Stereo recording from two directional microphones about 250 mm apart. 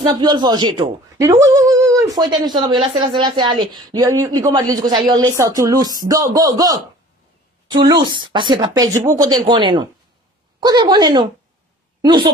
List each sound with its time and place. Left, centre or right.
0.0 s a woman's voice: centre